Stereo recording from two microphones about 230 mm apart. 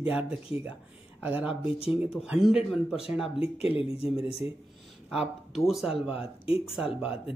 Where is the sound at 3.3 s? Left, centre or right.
Left.